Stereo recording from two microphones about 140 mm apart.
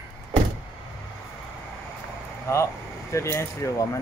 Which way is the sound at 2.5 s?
20° left (ahead or behind).